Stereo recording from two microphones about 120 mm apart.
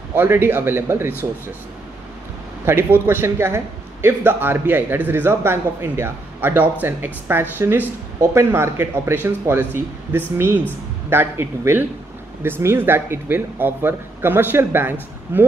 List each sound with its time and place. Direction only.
0.1 s a man's voice: 20° right (ahead or behind)
2.6 s a man's voice: 20° right (ahead or behind)